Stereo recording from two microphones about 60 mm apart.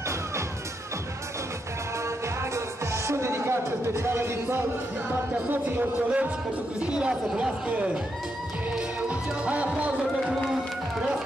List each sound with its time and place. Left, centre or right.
2.0 s music: right
5.5 s a man's voice: right
6.8 s speech: centre
9.4 s speech: right